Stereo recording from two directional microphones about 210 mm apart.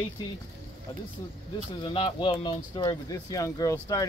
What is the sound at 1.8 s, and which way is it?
Speech, 25° left (ahead or behind).